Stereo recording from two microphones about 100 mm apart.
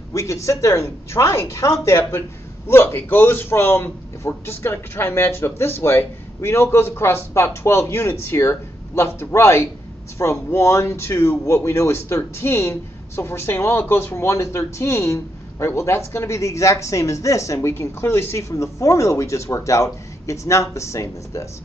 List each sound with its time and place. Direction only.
0.1 s a man's voice: 30° left (ahead or behind)